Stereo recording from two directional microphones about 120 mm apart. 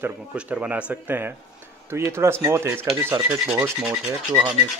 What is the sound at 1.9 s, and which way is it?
Speech, 20° right (ahead or behind).